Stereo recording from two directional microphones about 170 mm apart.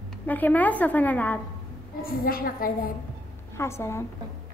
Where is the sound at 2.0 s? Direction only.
60° left (ahead or behind).